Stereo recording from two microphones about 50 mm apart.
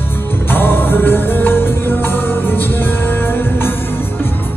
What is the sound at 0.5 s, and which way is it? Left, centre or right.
Music, left.